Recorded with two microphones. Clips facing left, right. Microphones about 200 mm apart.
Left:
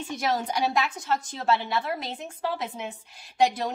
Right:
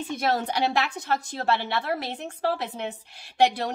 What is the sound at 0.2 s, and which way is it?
A woman's voice, 65° right (ahead or behind).